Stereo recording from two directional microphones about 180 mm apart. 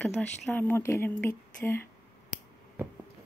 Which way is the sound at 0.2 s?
10° left (ahead or behind).